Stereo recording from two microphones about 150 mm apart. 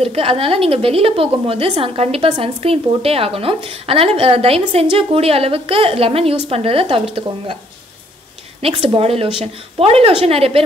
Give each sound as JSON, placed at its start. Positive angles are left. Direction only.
{"t": 0.0, "sound": "a woman's voice", "side_deg": -40}
{"t": 8.5, "sound": "a woman's voice", "side_deg": -40}